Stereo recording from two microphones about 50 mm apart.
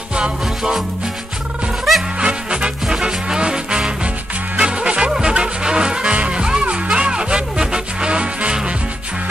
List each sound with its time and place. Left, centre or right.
0.1 s music: centre
2.1 s music: centre